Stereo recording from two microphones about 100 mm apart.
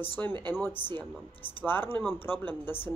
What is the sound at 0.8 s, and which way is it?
Speech, 70° left (ahead or behind).